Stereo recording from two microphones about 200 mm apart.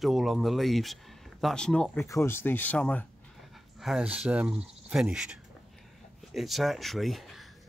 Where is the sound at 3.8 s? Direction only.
5° right (ahead or behind).